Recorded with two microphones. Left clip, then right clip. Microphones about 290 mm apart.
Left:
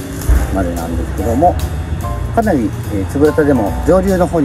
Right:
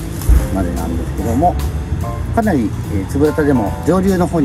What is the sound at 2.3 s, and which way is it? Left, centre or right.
Speech, right.